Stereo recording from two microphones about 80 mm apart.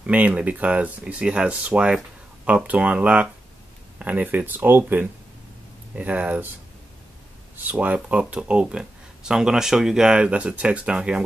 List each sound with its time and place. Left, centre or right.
0.0 s speech: centre
7.5 s speech: centre